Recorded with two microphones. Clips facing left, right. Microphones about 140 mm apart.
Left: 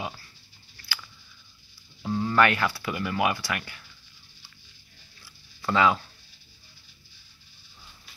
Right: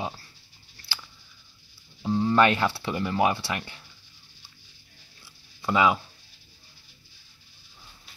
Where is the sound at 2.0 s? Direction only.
20° right (ahead or behind).